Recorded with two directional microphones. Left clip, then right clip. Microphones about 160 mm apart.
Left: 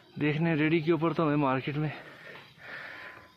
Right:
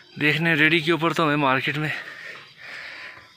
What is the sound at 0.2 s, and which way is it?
Speech, 10° right (ahead or behind).